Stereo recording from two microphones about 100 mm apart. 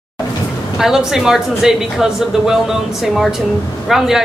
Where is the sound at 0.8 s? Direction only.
5° right (ahead or behind).